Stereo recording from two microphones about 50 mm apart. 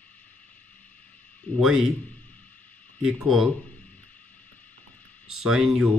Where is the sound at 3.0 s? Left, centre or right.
Centre.